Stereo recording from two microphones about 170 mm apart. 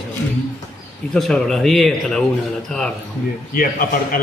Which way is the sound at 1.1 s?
5° left (ahead or behind).